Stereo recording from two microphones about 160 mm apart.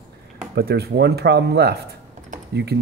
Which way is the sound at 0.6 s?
85° right.